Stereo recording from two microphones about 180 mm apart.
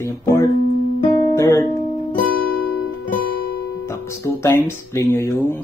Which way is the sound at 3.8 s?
15° left (ahead or behind).